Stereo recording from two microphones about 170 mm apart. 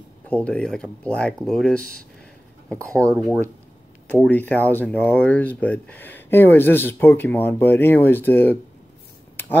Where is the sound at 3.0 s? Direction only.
10° right (ahead or behind).